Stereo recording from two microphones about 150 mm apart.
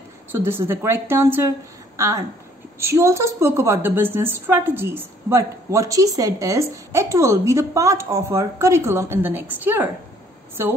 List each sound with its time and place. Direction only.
0.3 s a woman's voice: 15° right (ahead or behind)